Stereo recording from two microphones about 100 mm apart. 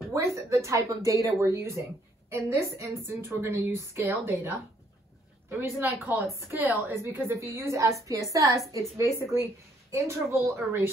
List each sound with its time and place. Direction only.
0.1 s a woman's voice: 30° right (ahead or behind)